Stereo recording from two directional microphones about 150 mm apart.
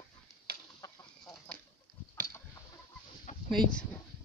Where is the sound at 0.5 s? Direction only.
90° right.